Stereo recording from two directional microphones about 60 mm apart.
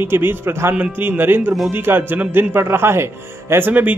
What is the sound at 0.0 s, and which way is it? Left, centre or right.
Speech, right.